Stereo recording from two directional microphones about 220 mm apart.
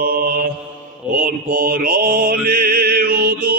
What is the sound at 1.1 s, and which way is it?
Mantra, 40° right (ahead or behind).